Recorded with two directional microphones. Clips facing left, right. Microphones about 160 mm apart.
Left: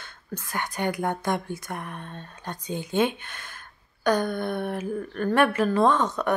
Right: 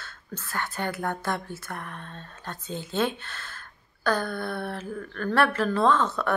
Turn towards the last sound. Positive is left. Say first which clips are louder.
# left 1 dB
turn(degrees=15)  # may be behind; listen again after turning